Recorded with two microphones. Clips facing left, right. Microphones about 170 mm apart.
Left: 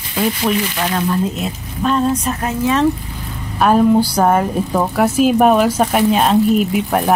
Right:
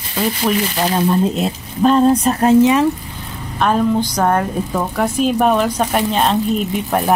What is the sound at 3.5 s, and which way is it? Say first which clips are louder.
A woman's voice: left 4 dB; 10° left (ahead or behind).